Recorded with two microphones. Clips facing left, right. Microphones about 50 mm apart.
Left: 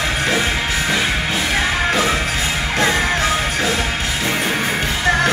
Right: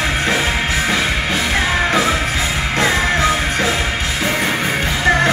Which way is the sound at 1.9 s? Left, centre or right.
Right.